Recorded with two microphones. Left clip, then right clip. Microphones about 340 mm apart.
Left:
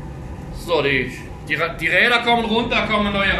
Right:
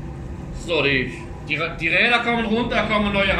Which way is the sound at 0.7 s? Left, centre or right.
Centre.